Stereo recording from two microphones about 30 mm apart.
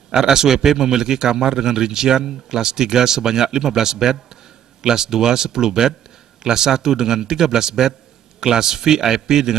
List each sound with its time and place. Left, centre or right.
0.1 s a man's voice: centre